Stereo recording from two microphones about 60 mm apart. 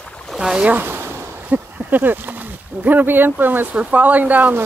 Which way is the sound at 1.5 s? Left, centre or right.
Right.